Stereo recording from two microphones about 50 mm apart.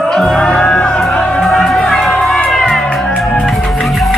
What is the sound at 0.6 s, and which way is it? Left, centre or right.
Music, left.